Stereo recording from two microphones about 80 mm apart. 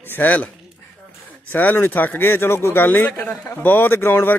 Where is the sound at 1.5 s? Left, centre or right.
Left.